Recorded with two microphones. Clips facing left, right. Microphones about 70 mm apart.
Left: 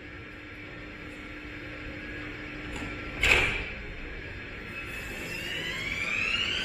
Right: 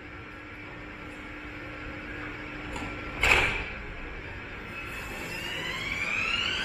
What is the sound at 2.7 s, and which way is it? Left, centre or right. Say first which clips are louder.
Printer: right 1 dB; centre.